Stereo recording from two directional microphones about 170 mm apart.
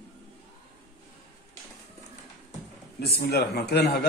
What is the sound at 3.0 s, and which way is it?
A man's voice, 65° left (ahead or behind).